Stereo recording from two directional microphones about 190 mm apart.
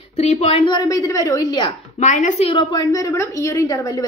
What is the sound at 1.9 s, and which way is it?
Speech, 40° left (ahead or behind).